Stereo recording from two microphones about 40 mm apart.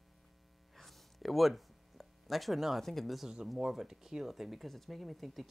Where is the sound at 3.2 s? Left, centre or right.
Centre.